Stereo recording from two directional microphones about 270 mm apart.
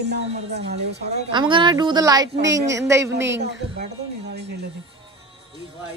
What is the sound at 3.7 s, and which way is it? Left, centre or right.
Speech, right.